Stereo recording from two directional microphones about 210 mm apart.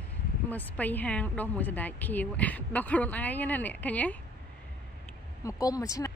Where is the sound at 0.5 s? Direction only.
10° left (ahead or behind).